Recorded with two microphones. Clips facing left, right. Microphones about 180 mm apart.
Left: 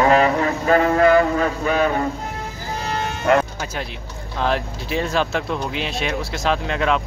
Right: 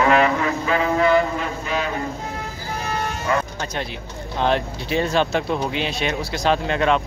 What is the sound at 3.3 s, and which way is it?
Speech, 70° left (ahead or behind).